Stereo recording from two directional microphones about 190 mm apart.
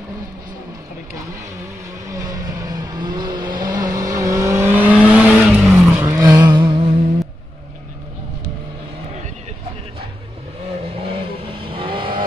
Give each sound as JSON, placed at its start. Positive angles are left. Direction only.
{"t": 2.0, "sound": "vehicle", "side_deg": -20}
{"t": 6.2, "sound": "vehicle", "side_deg": -20}
{"t": 11.0, "sound": "vehicle", "side_deg": -30}